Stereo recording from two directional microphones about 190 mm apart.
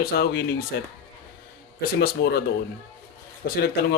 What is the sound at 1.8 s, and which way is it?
Speech, 55° left (ahead or behind).